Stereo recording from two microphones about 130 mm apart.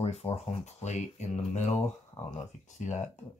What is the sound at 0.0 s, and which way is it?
Speech, 50° left (ahead or behind).